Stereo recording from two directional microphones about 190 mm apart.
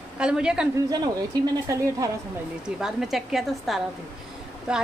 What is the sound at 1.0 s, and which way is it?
Speech, 20° right (ahead or behind).